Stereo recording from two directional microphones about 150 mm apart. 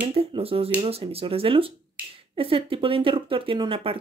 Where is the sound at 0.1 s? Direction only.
40° right (ahead or behind).